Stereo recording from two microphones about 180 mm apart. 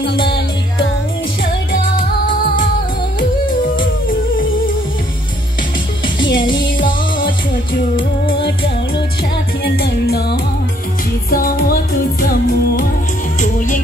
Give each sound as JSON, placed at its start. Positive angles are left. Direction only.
{"t": 0.1, "sound": "music", "side_deg": 30}
{"t": 6.1, "sound": "music", "side_deg": 25}
{"t": 6.8, "sound": "music", "side_deg": 50}
{"t": 9.8, "sound": "music", "side_deg": 60}